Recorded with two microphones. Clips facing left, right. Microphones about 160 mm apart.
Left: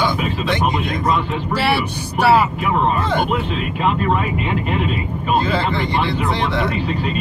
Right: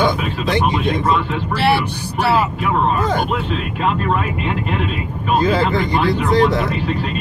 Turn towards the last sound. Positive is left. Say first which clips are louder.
# right 4 dB
turn(degrees=-40)  # may be behind; listen again after turning